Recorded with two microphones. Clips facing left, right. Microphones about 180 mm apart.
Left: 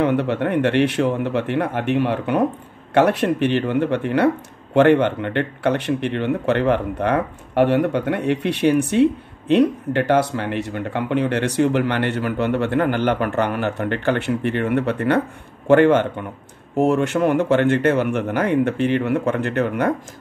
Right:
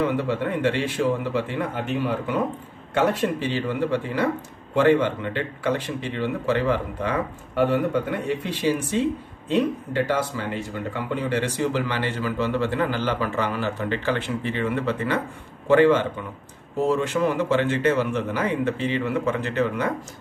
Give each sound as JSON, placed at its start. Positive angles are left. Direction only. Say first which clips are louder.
{"t": 0.0, "sound": "speech", "louder": "left 4 dB", "side_deg": 65}
{"t": 16.7, "sound": "speech", "louder": "left 4 dB", "side_deg": 70}